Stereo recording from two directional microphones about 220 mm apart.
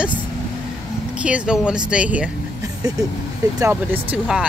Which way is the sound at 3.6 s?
10° right (ahead or behind).